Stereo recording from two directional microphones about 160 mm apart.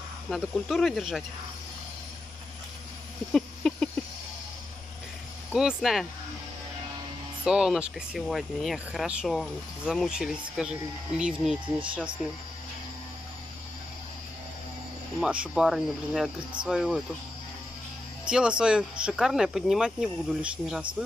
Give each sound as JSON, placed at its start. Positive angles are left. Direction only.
{"t": 0.3, "sound": "speech", "side_deg": 0}
{"t": 3.3, "sound": "a sound", "side_deg": 5}
{"t": 5.5, "sound": "speech", "side_deg": -5}
{"t": 7.4, "sound": "speech", "side_deg": -5}
{"t": 11.6, "sound": "speech", "side_deg": -30}
{"t": 12.2, "sound": "speech", "side_deg": 0}
{"t": 15.1, "sound": "speech", "side_deg": -5}
{"t": 18.2, "sound": "speech", "side_deg": -5}